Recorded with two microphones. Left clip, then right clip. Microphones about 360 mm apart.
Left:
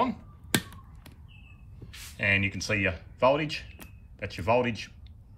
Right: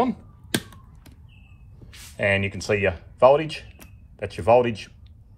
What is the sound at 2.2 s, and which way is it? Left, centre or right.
Speech, centre.